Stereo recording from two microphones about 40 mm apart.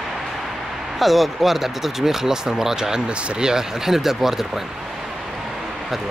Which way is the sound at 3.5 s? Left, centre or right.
Centre.